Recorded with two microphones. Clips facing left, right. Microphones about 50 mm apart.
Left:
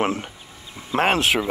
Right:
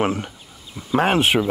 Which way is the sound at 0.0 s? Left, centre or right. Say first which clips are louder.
Right 1 dB; centre.